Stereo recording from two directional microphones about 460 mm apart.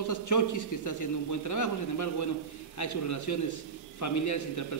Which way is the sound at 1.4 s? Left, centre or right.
Left.